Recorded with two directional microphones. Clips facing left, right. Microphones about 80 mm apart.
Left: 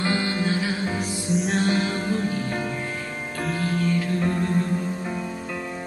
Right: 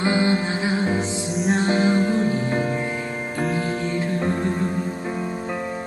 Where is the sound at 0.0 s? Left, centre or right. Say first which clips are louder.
Right 4 dB; right.